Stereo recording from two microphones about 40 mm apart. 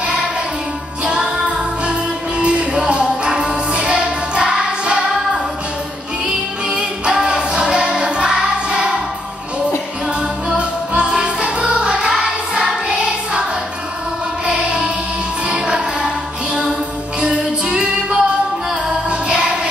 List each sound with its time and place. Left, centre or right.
1.0 s music: right
6.2 s music: right
10.6 s music: right
15.4 s music: right
17.2 s music: centre